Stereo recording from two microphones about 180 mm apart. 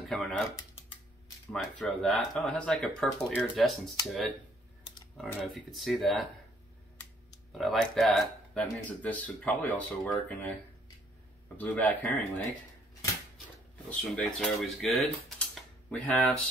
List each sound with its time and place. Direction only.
0.1 s speech: centre (ahead or behind)
1.5 s speech: centre (ahead or behind)
7.5 s speech: centre (ahead or behind)
11.5 s speech: 10° left (ahead or behind)
13.8 s speech: 5° left (ahead or behind)